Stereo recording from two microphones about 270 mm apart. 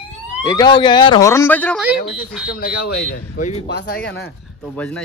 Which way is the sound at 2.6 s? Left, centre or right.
Left.